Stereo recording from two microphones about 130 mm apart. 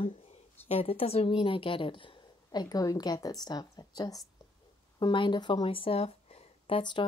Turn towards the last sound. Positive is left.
turn(degrees=40)  # may be behind; listen again after turning